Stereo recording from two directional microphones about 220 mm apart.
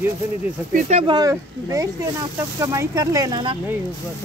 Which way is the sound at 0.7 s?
30° right (ahead or behind).